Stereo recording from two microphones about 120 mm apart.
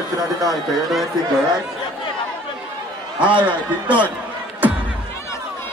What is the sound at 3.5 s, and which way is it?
Speech, 10° right (ahead or behind).